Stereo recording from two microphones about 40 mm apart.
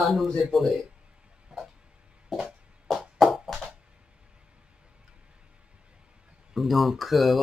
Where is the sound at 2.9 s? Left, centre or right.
Centre.